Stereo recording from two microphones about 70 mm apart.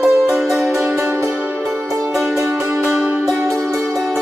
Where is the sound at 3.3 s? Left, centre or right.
Right.